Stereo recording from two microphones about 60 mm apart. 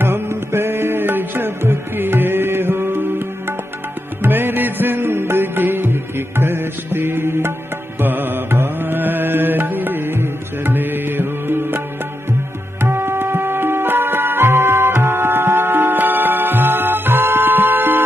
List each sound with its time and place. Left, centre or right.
0.0 s music: right
12.8 s music: right